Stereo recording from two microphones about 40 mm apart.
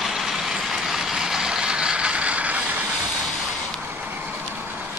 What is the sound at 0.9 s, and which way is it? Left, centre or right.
Vehicle, centre.